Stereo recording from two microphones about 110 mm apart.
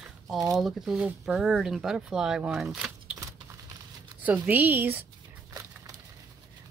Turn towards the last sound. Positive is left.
turn(degrees=-15)  # may be behind; listen again after turning